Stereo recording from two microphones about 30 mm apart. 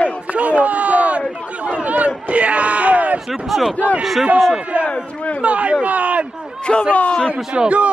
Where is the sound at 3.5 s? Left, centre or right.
Centre.